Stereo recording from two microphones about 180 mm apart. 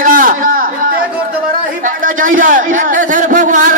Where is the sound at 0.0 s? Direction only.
50° right (ahead or behind).